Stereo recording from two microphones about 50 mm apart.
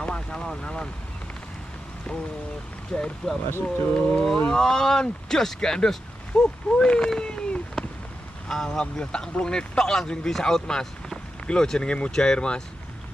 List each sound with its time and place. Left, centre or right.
0.0 s speech: centre
2.9 s a man's voice: centre
7.1 s a sound: centre
8.5 s a man's voice: centre